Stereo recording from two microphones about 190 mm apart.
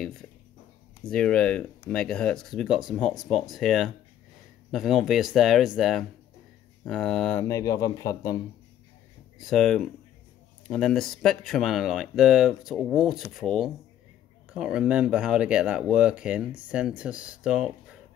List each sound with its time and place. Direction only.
0.0 s speech: 5° left (ahead or behind)
7.4 s a man's voice: 15° left (ahead or behind)
9.4 s speech: centre (ahead or behind)